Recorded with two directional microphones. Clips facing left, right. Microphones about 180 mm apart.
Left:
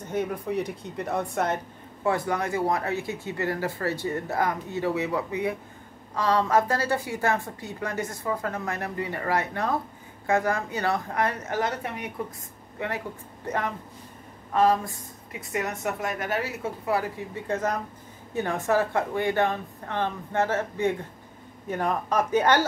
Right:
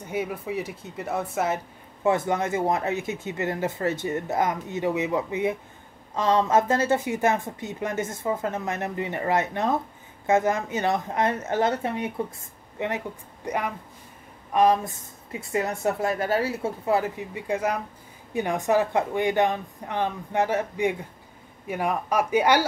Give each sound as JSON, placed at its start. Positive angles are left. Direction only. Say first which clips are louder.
{"t": 0.0, "sound": "speech", "louder": "left 1 dB", "side_deg": -10}
{"t": 2.0, "sound": "speech", "louder": "right 3 dB", "side_deg": -20}